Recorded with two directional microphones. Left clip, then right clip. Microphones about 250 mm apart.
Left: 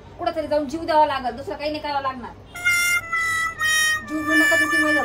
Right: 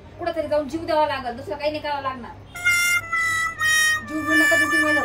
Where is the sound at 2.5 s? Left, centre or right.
Centre.